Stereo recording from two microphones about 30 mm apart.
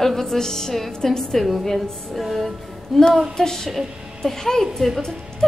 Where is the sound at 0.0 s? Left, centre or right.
Centre.